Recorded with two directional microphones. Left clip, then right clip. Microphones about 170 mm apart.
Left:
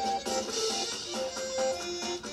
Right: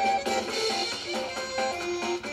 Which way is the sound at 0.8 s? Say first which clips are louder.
Right 4 dB; 35° right (ahead or behind).